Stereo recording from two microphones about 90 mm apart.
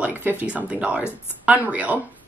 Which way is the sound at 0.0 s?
20° right (ahead or behind).